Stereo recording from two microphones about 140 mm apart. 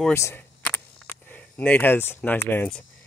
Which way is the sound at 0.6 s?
15° left (ahead or behind).